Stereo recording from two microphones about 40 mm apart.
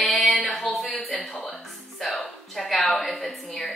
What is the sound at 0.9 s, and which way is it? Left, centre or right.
Speech, left.